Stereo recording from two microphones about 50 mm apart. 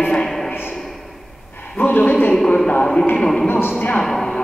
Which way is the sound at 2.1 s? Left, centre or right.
Left.